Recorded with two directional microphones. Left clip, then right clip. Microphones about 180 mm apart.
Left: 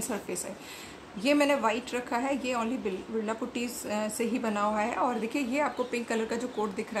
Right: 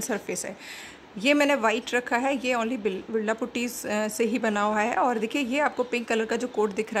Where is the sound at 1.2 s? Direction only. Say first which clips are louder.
Right 4 dB; 45° right (ahead or behind).